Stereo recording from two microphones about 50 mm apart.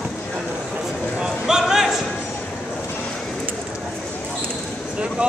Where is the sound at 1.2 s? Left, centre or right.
Centre.